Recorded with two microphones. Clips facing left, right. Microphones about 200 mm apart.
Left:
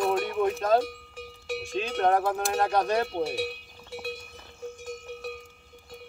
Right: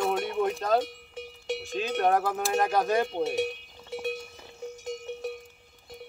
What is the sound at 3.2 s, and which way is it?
Cowbell, 20° right (ahead or behind).